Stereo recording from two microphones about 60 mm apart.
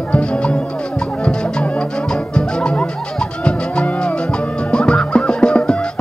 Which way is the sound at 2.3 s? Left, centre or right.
Centre.